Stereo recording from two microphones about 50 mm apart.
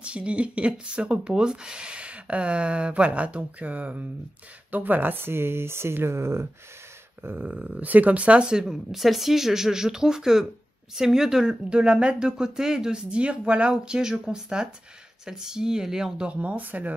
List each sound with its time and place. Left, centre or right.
0.0 s speech: right
7.2 s speech: right; by 16.3 s centre
16.3 s speech: right